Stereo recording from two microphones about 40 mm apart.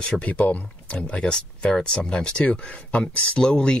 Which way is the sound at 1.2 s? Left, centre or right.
Centre.